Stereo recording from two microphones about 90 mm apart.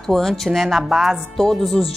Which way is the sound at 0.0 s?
5° left (ahead or behind).